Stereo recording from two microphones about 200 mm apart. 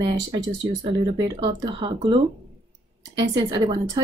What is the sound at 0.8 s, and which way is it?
Speech, 25° right (ahead or behind).